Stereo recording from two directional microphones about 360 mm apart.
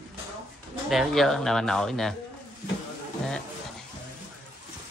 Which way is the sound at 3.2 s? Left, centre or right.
Centre.